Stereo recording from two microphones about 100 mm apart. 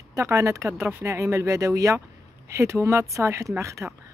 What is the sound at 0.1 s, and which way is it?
Speech, 30° right (ahead or behind).